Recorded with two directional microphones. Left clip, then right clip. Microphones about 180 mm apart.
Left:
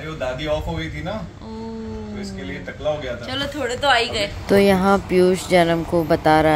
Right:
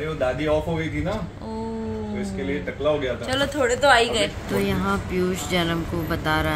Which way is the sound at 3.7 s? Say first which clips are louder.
Even; 10° left (ahead or behind).